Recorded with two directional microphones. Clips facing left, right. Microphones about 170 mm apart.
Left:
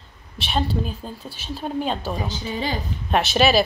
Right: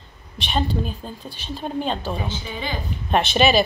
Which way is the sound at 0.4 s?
5° left (ahead or behind).